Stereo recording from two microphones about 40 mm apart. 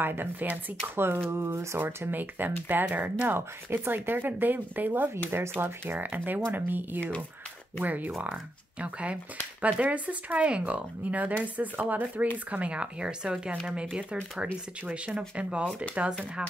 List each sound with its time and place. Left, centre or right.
0.0 s speech: right
0.9 s speech: right
1.3 s speech: right
2.1 s speech: right
3.3 s speech: right
5.3 s speech: right
5.9 s speech: right
8.8 s speech: right
15.1 s speech: right